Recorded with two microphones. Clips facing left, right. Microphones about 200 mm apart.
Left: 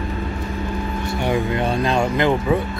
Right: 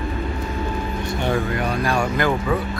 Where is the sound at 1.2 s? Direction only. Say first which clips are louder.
Left 2 dB; 15° left (ahead or behind).